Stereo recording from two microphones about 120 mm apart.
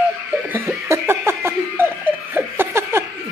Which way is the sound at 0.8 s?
20° right (ahead or behind).